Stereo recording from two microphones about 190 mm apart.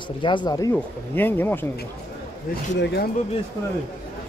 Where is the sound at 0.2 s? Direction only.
25° left (ahead or behind).